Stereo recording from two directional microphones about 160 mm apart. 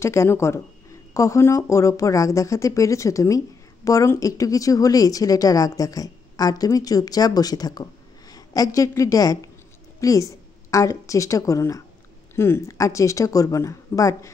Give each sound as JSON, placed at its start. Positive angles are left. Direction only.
{"t": 0.0, "sound": "a woman's voice", "side_deg": 15}